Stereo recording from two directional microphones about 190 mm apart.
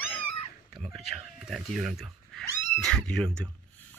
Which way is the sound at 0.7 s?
Centre (ahead or behind).